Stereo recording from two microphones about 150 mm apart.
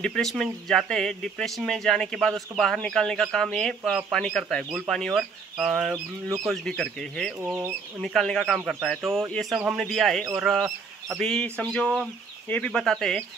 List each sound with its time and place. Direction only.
0.0 s speech: 5° left (ahead or behind)
7.3 s speech: 15° right (ahead or behind)
8.0 s speech: 5° left (ahead or behind)